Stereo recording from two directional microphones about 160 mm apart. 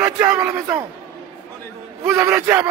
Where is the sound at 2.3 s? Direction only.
15° right (ahead or behind).